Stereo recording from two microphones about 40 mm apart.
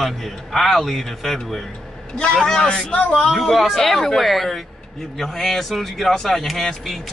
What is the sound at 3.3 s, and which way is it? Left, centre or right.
A man's voice, centre.